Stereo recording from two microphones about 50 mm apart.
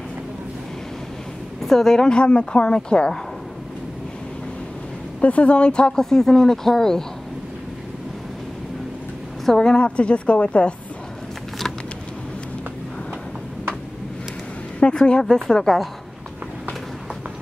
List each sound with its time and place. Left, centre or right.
1.6 s speech: centre
5.2 s speech: left; by 7.1 s centre
9.5 s speech: centre
9.8 s a woman's voice: left
14.8 s a woman's voice: left